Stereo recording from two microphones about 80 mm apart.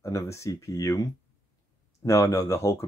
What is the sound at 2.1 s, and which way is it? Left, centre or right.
Speech, left.